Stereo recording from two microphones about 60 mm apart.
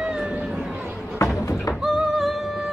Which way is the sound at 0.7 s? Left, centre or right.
Right.